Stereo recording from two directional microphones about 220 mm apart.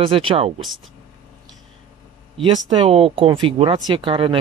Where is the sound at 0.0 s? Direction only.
25° right (ahead or behind).